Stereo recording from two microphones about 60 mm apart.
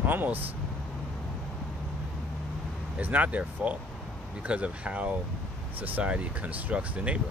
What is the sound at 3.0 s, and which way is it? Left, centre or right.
Speech, right.